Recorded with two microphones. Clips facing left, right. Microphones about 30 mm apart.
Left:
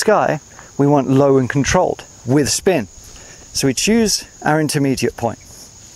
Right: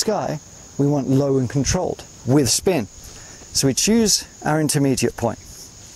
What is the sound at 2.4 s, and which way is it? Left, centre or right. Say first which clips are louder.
Speech: left 2 dB; left.